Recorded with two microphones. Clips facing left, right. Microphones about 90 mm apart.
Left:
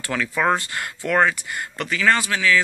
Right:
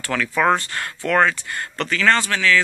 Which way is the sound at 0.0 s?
15° left (ahead or behind).